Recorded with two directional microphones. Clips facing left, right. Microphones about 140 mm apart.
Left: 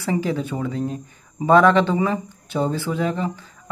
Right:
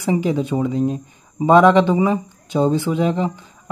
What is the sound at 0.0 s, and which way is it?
Speech, 15° right (ahead or behind).